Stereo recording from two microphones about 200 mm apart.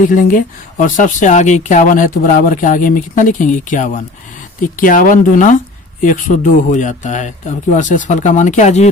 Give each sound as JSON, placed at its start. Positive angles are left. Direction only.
{"t": 0.1, "sound": "speech", "side_deg": 40}